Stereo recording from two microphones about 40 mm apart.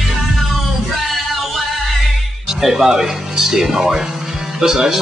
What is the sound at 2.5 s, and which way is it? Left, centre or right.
Speech, centre.